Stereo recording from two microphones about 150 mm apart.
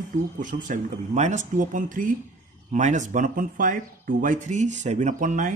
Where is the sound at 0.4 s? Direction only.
60° right (ahead or behind).